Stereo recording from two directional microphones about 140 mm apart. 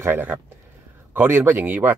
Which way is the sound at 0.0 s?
15° right (ahead or behind).